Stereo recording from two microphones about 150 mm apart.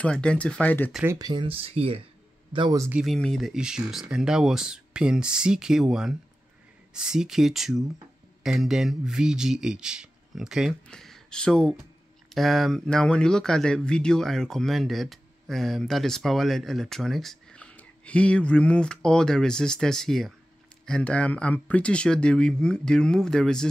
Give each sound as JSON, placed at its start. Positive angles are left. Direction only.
{"t": 0.0, "sound": "speech", "side_deg": 5}
{"t": 1.0, "sound": "speech", "side_deg": -25}
{"t": 3.0, "sound": "speech", "side_deg": 0}